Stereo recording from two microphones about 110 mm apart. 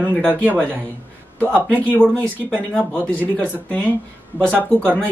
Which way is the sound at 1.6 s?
15° left (ahead or behind).